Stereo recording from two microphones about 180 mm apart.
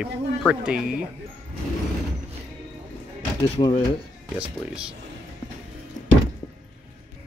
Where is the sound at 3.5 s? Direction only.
30° left (ahead or behind).